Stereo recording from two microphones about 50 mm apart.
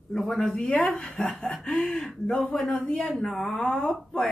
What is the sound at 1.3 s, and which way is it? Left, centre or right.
Chuckle, centre.